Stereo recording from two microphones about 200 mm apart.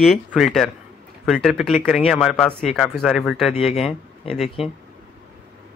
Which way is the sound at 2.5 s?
35° left (ahead or behind).